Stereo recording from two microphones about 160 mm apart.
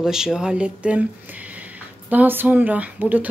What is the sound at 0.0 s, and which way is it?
Speech, 5° right (ahead or behind).